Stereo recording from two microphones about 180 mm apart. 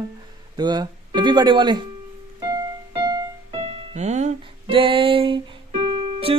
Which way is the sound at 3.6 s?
35° right (ahead or behind).